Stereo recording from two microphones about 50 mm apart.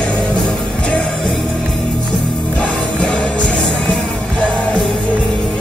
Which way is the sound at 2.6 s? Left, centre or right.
Centre.